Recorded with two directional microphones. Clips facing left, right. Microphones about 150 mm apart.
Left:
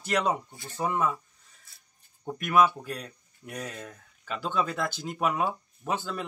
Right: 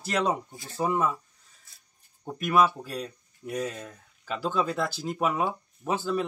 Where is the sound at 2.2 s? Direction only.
Centre (ahead or behind).